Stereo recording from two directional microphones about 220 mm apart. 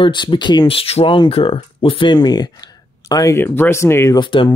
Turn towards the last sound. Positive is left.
turn(degrees=20)  # may be behind; listen again after turning